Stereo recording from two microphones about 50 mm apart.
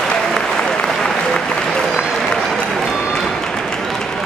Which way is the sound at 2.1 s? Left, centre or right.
Centre.